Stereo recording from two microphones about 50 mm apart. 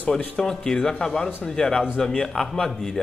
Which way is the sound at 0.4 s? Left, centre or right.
Centre.